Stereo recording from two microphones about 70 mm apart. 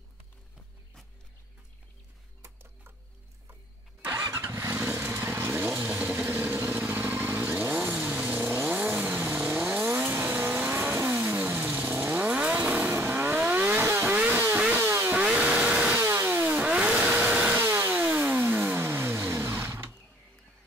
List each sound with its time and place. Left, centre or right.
4.3 s vehicle: right
12.9 s vehicle: right
14.8 s vehicle: right
15.1 s chainsaw: centre
16.0 s vehicle: right
16.5 s vehicle: centre
17.6 s vehicle: right